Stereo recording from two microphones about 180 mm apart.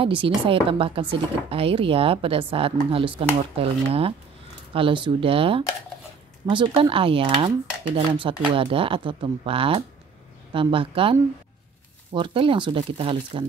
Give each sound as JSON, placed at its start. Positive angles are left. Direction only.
{"t": 0.0, "sound": "speech", "side_deg": -30}